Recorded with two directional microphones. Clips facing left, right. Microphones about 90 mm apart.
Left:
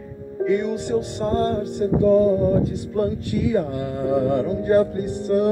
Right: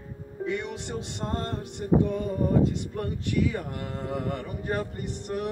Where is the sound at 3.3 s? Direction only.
40° left (ahead or behind).